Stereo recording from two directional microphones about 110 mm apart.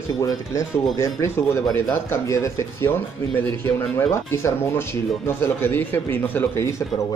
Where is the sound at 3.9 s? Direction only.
25° left (ahead or behind).